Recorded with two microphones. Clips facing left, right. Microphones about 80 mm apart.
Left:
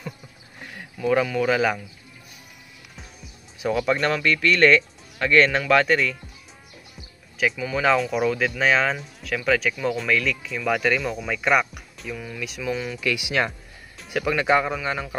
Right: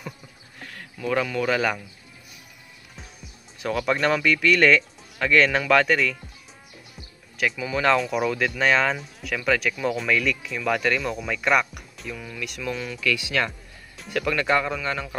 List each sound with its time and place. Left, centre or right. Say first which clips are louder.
0.6 s a sound: left 2 dB; centre
1.0 s speech: left 3 dB; centre
3.5 s speech: left 2 dB; centre
7.3 s speech: left 1 dB; centre
13.0 s speech: even; centre
13.5 s speech: left 1 dB; centre